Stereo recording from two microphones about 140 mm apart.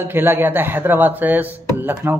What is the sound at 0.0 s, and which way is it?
A man's voice, 15° right (ahead or behind).